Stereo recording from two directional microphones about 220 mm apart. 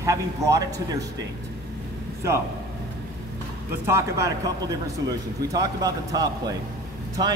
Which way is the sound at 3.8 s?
15° right (ahead or behind).